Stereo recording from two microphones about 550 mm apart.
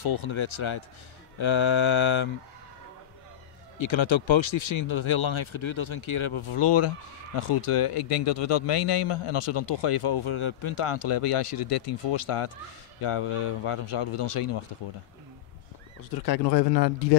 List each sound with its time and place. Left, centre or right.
0.0 s speech: left
3.7 s a man's voice: left
16.3 s speech: left